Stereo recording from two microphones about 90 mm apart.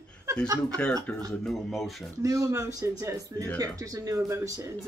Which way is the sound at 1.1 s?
15° left (ahead or behind).